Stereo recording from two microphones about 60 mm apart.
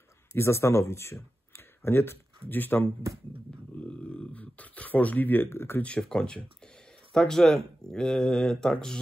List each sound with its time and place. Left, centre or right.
0.3 s speech: left
3.8 s a sound: centre; by 5.8 s left
5.8 s speech: left